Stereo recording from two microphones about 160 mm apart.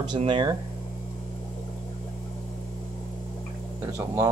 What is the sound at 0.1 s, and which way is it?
Speech, 30° right (ahead or behind).